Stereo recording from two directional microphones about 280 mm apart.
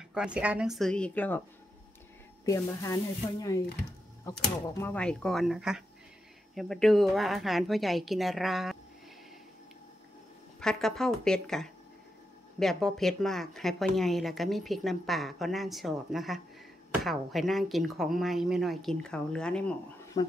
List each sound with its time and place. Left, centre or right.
0.1 s speech: centre
2.4 s speech: centre
10.6 s speech: centre